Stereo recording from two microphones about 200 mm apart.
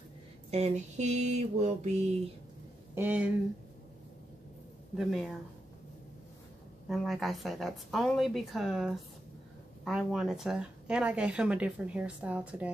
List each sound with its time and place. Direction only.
0.5 s speech: 35° right (ahead or behind)
2.9 s speech: 10° right (ahead or behind)
4.9 s speech: centre (ahead or behind)
6.9 s speech: centre (ahead or behind)